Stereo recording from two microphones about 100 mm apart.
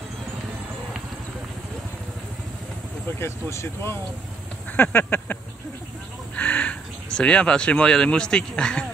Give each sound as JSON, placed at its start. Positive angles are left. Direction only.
{"t": 3.2, "sound": "speech", "side_deg": 25}